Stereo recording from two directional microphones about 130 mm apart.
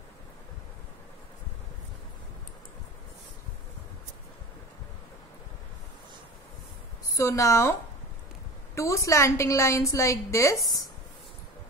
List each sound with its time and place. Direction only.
7.2 s a woman's voice: 25° left (ahead or behind)
8.7 s a woman's voice: 25° left (ahead or behind)